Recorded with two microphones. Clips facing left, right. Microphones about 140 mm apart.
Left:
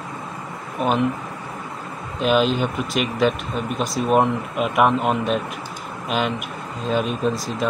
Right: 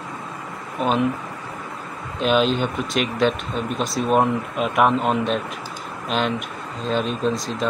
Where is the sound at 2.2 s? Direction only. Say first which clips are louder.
Even; 5° left (ahead or behind).